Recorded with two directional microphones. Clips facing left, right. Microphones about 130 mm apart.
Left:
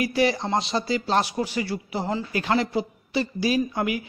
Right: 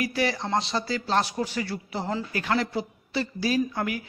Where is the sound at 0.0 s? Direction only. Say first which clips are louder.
Left 4 dB; 20° left (ahead or behind).